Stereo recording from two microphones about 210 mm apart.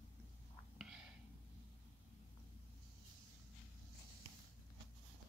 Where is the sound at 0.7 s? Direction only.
5° right (ahead or behind).